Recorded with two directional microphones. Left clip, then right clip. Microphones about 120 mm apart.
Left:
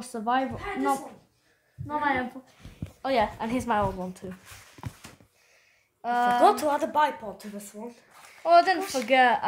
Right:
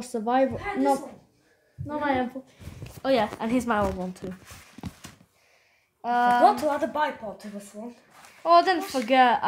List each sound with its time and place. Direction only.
0.0 s a woman's voice: 20° left (ahead or behind)
3.0 s a woman's voice: 5° left (ahead or behind)
6.0 s a woman's voice: 5° left (ahead or behind)
6.4 s a woman's voice: 70° left (ahead or behind); by 7.7 s 85° left
8.4 s a woman's voice: centre (ahead or behind)